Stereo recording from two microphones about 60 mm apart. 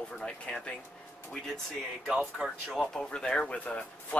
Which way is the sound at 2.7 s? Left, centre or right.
Centre.